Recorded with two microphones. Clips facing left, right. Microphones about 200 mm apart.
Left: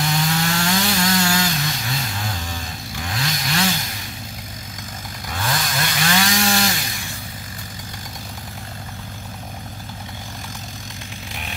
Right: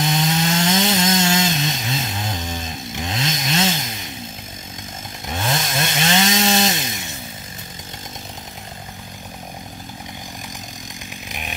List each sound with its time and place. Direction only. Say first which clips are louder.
0.0 s wood: right 2 dB; 20° right (ahead or behind)
5.3 s chainsaw: right 2 dB; 25° right (ahead or behind)